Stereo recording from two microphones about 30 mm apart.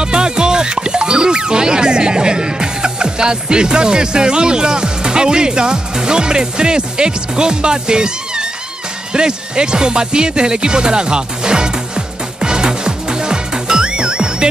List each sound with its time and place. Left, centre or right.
0.0 s speech: right
12.4 s music: right